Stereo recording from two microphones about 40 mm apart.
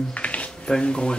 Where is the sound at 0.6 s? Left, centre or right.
Left.